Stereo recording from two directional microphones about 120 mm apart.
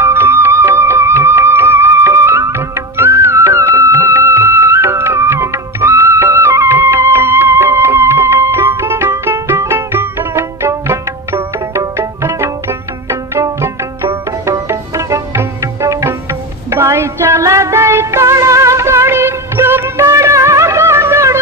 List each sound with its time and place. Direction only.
0.0 s music: 20° right (ahead or behind)